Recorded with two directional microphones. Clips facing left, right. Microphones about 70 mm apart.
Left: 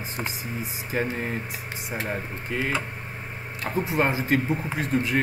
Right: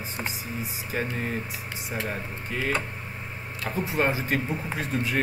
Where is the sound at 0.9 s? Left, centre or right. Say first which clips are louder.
Left 2 dB; left.